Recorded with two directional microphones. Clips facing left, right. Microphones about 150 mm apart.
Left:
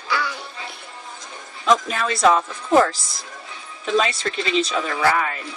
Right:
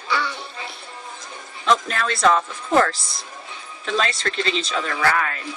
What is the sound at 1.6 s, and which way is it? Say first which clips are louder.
Speech: left 1 dB; 5° left (ahead or behind).